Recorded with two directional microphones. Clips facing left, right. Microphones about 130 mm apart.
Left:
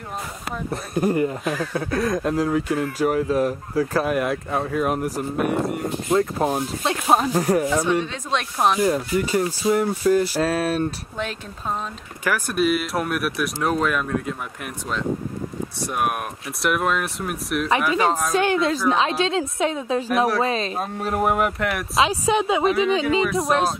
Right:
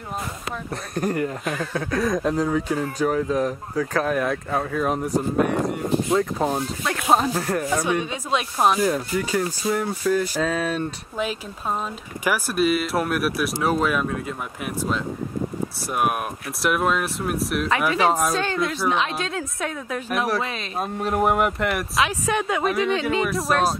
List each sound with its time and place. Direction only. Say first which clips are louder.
0.7 s speech: left 4 dB; 5° left (ahead or behind)
7.1 s speech: left 2 dB; 15° left (ahead or behind)
7.7 s speech: left 2 dB; 10° right (ahead or behind); by 10.8 s 10° left (ahead or behind)
12.3 s speech: even; centre (ahead or behind)
17.8 s speech: right 1 dB; 10° right (ahead or behind)
18.3 s speech: left 4 dB; 15° left (ahead or behind)
18.9 s a woman's voice: left 4 dB; 30° left (ahead or behind)
20.1 s speech: left 3 dB; centre (ahead or behind)
20.4 s speech: left 8 dB; 30° left (ahead or behind)
20.7 s speech: right 1 dB; centre (ahead or behind)
22.1 s a woman's voice: left 3 dB; 15° left (ahead or behind)
22.6 s speech: left 3 dB; 5° left (ahead or behind)